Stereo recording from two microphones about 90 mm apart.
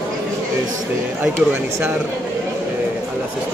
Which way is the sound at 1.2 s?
20° right (ahead or behind).